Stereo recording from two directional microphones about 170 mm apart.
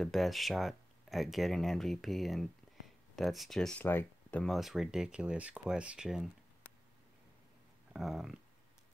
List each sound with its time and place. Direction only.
0.0 s speech: centre (ahead or behind)
3.8 s speech: 15° left (ahead or behind); by 6.3 s centre (ahead or behind)
7.9 s speech: centre (ahead or behind)